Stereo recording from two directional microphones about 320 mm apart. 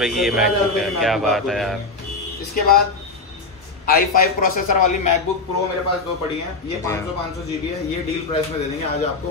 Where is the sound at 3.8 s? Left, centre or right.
Left.